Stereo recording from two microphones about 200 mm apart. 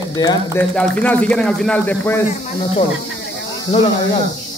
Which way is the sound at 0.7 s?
5° left (ahead or behind).